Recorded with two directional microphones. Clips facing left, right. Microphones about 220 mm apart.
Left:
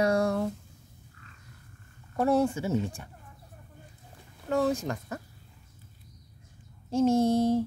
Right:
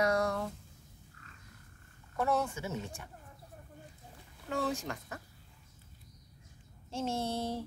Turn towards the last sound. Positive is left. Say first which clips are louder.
# left 12 dB
turn(degrees=45)  # may be behind; listen again after turning